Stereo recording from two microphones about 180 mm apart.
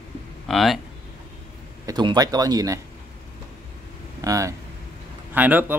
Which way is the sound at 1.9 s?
20° right (ahead or behind).